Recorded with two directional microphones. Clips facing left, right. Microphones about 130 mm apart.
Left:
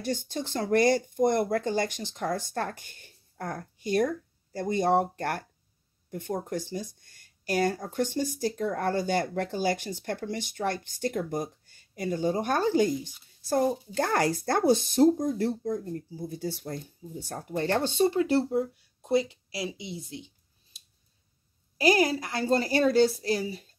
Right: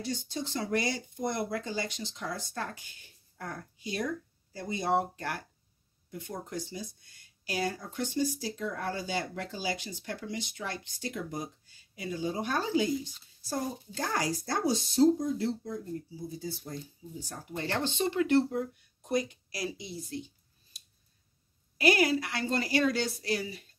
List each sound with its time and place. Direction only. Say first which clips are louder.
0.0 s speech: left 4 dB; 55° left (ahead or behind); by 20.0 s 25° left (ahead or behind)
21.7 s a woman's voice: left 2 dB; 35° left (ahead or behind)